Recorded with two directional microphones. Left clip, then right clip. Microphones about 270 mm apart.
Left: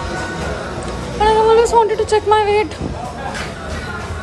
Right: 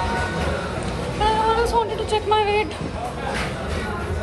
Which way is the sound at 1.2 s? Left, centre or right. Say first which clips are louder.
Left 8 dB; left.